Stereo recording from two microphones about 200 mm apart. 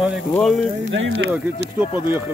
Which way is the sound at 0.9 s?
75° right (ahead or behind).